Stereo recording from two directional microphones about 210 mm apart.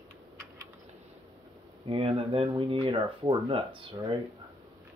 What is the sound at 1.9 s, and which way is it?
Speech, 25° right (ahead or behind).